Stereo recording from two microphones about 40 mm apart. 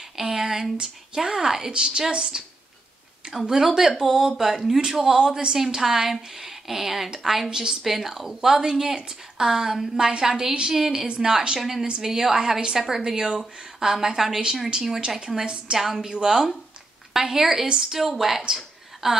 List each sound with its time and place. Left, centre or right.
0.2 s a sound: centre
0.7 s a woman's voice: centre
4.1 s a woman's voice: centre